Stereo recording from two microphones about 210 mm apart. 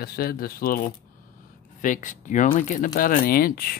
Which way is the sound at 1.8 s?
40° left (ahead or behind).